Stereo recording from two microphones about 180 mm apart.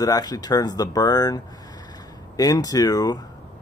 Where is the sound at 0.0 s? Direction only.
20° left (ahead or behind).